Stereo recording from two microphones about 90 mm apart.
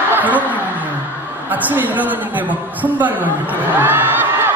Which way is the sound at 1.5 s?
20° right (ahead or behind).